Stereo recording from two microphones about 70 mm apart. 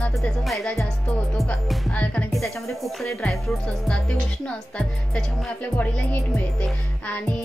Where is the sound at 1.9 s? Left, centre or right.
Centre.